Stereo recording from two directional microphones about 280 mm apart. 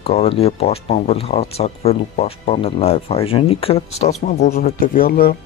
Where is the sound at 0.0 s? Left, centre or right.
Left.